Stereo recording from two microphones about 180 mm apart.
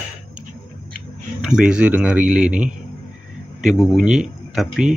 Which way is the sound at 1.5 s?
5° right (ahead or behind).